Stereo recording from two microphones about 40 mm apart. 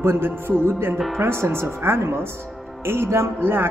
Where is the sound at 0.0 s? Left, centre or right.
Right.